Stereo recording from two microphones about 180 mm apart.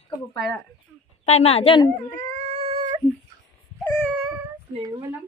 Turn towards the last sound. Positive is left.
turn(degrees=-15)  # may be behind; listen again after turning